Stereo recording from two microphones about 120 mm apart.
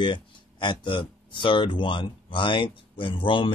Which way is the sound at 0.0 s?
40° left (ahead or behind).